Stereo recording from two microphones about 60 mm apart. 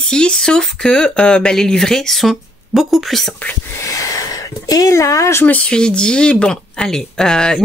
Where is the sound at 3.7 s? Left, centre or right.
Left.